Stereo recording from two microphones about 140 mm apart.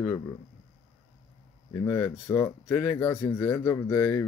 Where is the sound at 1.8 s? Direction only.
25° left (ahead or behind).